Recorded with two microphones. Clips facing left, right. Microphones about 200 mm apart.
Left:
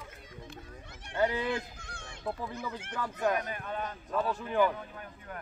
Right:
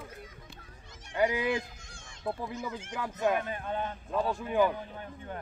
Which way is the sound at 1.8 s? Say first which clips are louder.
Left 5 dB; 60° left (ahead or behind).